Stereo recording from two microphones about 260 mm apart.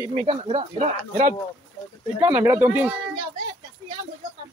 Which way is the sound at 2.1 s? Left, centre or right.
Centre.